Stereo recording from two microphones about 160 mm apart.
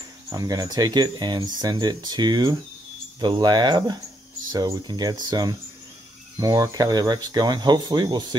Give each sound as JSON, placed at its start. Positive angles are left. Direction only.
{"t": 0.3, "sound": "speech", "side_deg": -25}